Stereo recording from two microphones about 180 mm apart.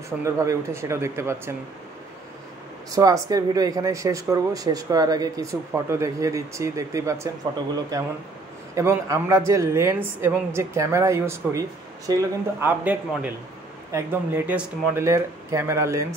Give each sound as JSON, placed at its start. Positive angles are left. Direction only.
{"t": 0.2, "sound": "speech", "side_deg": -15}
{"t": 2.9, "sound": "speech", "side_deg": -20}
{"t": 8.7, "sound": "speech", "side_deg": -15}